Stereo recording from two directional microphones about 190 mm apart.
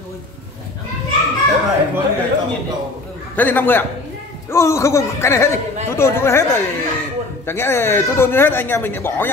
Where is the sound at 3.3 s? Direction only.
10° left (ahead or behind).